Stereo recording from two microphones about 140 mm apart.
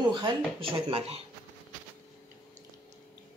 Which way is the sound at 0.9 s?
45° right (ahead or behind).